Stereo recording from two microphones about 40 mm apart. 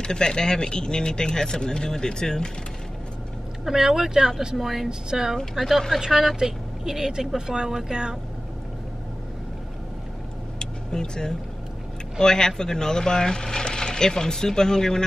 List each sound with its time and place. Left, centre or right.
0.0 s speech: centre
3.6 s a woman's voice: centre
5.5 s speech: centre
5.9 s a woman's voice: centre
10.6 s vehicle: centre
12.2 s speech: centre